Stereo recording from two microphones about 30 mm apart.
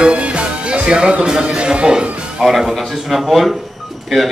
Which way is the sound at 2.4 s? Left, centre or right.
Centre.